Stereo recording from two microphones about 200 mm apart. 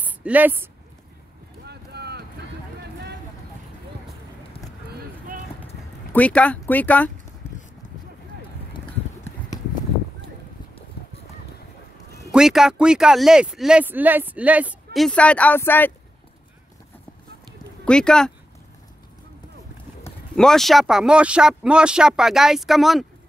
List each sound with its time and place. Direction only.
0.0 s speech: 10° right (ahead or behind)
1.7 s clip-clop: 55° right (ahead or behind)
2.8 s vehicle: 55° right (ahead or behind)
6.1 s speech: 5° left (ahead or behind)
12.3 s speech: centre (ahead or behind)
15.0 s speech: 5° left (ahead or behind)
17.8 s speech: 5° left (ahead or behind)
20.3 s speech: centre (ahead or behind)